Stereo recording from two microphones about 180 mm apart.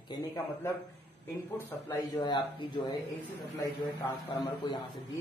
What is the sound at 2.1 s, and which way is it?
Speech, 25° left (ahead or behind).